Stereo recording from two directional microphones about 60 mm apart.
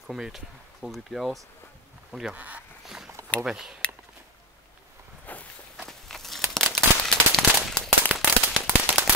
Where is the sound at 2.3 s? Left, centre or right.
Right.